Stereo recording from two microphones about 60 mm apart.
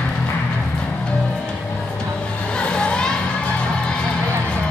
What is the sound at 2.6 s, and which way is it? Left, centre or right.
Music, centre.